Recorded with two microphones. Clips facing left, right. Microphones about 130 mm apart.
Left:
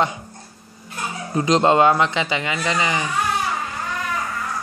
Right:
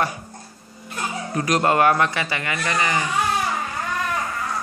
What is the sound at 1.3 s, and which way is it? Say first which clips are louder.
Speech: left 4 dB; 20° left (ahead or behind).